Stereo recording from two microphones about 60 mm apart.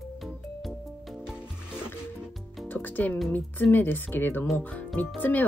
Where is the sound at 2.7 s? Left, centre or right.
Left.